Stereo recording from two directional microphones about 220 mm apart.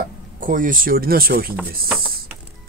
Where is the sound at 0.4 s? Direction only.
40° right (ahead or behind).